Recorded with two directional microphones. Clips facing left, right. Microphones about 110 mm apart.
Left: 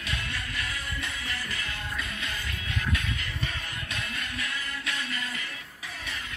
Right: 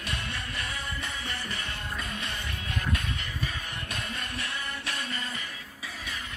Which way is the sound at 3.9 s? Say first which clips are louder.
Even; 45° right (ahead or behind).